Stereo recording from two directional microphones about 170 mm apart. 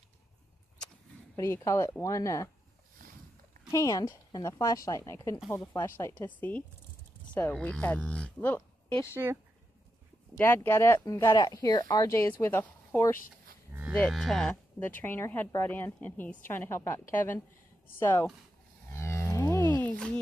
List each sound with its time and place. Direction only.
1.3 s speech: 15° left (ahead or behind)
3.7 s a woman's voice: 20° left (ahead or behind)
9.1 s speech: 15° right (ahead or behind)
10.3 s speech: 10° left (ahead or behind)
18.9 s livestock: 15° left (ahead or behind)